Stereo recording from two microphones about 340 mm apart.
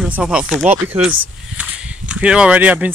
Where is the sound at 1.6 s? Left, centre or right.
Centre.